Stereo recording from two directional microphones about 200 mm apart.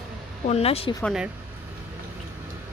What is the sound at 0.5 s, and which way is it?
Speech, 30° left (ahead or behind).